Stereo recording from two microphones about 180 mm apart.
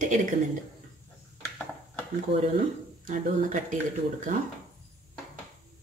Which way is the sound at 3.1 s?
45° right (ahead or behind).